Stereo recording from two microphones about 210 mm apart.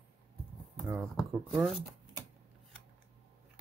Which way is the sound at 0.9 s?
Centre (ahead or behind).